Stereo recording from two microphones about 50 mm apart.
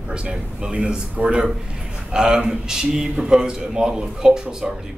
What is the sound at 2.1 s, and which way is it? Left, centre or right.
A man's voice, centre.